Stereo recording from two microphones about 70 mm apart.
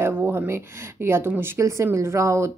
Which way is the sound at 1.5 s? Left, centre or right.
Right.